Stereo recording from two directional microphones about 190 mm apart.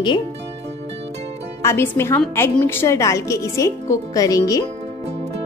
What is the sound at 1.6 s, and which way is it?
A woman's voice, 15° left (ahead or behind).